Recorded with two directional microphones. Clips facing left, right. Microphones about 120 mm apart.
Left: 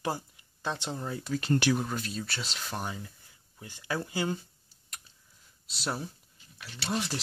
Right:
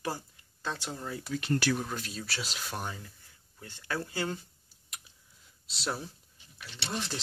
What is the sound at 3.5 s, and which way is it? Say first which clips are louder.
Speech: left 2 dB; 10° left (ahead or behind).